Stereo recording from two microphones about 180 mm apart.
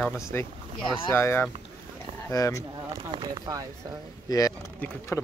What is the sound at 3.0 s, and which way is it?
Speech, 25° right (ahead or behind).